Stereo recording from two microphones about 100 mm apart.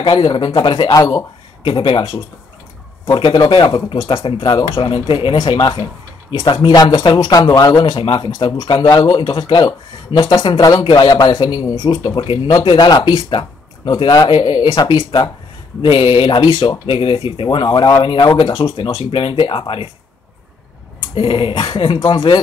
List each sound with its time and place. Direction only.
0.0 s speech: 55° left (ahead or behind)
1.6 s speech: 60° left (ahead or behind); by 7.8 s 35° left (ahead or behind)
7.8 s speech: 60° left (ahead or behind)
16.8 s speech: 65° left (ahead or behind)
21.1 s speech: 60° left (ahead or behind)